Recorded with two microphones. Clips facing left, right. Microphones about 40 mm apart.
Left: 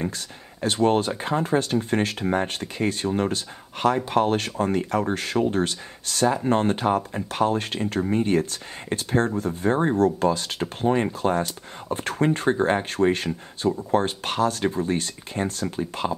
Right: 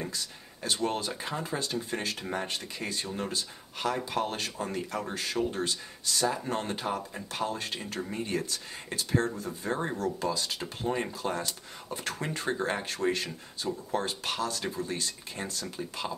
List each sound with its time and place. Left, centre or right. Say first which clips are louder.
0.6 s speech: left 10 dB; left
6.3 s speech: left 11 dB; left
8.0 s speech: left 11 dB; left